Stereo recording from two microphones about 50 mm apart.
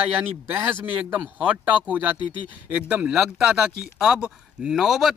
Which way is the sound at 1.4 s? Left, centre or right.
Right.